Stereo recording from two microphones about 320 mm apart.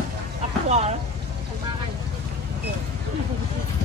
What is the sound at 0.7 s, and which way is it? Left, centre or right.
Speech, right.